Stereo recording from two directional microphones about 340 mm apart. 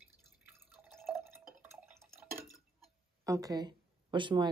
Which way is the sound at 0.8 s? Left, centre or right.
Centre.